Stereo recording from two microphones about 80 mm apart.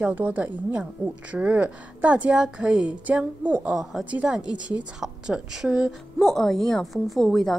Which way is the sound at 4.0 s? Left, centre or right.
Centre.